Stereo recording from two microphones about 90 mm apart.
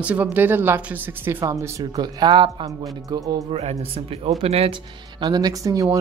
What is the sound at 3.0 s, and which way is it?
Speech, 40° right (ahead or behind).